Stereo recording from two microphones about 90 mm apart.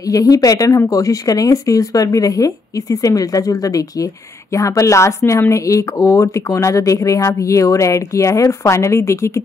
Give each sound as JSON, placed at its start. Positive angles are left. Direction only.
{"t": 0.0, "sound": "speech", "side_deg": 40}